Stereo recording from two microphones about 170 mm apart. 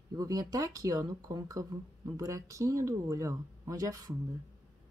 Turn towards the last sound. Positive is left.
turn(degrees=-20)  # may be behind; listen again after turning